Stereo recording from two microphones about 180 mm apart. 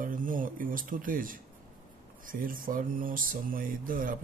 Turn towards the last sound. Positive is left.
turn(degrees=-50)  # may be behind; listen again after turning